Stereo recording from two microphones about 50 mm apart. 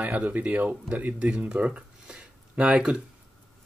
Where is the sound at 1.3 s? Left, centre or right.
Right.